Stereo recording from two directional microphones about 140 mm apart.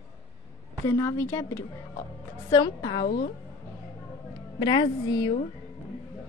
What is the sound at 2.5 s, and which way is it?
Speech, 30° left (ahead or behind).